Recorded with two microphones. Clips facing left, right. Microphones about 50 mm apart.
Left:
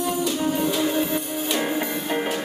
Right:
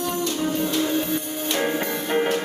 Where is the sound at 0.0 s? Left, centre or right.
Centre.